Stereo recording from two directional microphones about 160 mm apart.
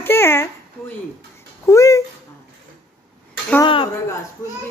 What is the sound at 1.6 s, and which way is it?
Speech, 20° left (ahead or behind).